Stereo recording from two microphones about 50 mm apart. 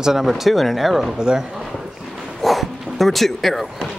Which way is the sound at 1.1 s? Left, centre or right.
Centre.